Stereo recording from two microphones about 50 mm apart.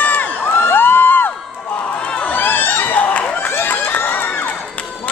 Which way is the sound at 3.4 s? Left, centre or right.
Left.